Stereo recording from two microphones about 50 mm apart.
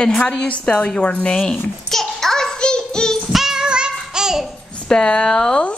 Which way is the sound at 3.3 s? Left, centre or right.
Centre.